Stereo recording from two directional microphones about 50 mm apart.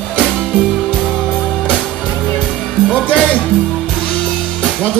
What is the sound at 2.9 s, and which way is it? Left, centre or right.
Music, centre.